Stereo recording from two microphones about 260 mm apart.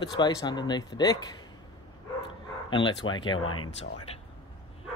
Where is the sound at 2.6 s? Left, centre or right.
Centre.